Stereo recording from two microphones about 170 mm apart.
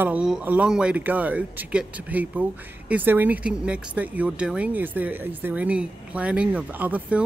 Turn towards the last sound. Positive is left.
turn(degrees=-10)  # may be behind; listen again after turning